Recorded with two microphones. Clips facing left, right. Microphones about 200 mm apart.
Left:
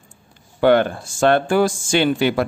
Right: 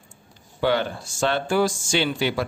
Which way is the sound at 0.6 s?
55° left (ahead or behind).